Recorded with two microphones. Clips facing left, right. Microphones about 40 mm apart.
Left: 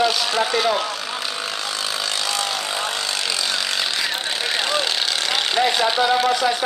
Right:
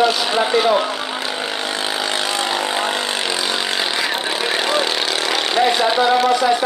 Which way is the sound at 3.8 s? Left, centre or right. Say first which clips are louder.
Right 3 dB; centre.